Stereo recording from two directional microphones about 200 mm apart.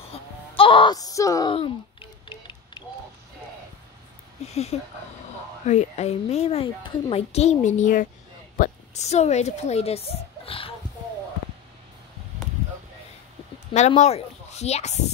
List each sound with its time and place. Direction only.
0.1 s a sound: 25° left (ahead or behind)
4.7 s a child's voice: 30° left (ahead or behind)
13.7 s a child's voice: 35° left (ahead or behind)